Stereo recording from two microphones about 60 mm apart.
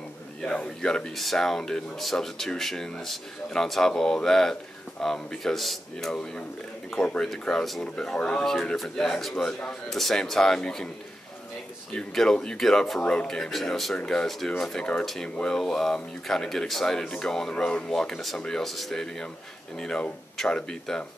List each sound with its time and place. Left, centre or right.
0.4 s speech: centre
1.1 s a man's voice: centre
7.2 s a man's voice: centre
9.5 s speech: centre
9.8 s speech: centre
11.9 s speech: centre
13.0 s speech: centre